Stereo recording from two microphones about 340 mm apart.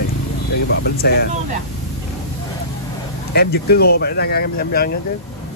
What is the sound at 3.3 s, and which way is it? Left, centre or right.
Speech, left.